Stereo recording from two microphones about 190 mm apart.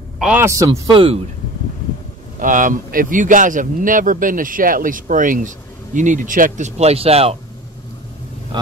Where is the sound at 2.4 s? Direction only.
45° right (ahead or behind).